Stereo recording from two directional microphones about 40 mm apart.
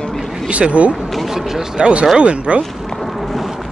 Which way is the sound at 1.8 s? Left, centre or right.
Right.